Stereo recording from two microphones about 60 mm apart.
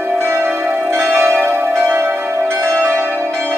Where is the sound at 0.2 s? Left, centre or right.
Right.